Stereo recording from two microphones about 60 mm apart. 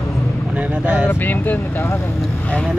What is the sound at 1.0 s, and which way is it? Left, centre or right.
Speech, left.